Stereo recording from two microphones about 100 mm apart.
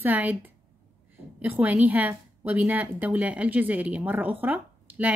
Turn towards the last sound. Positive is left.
turn(degrees=-15)  # may be behind; listen again after turning